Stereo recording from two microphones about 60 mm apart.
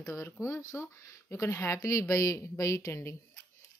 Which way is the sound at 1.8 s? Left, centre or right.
Left.